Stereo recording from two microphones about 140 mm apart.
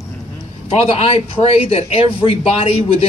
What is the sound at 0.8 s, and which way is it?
Speech, 45° left (ahead or behind).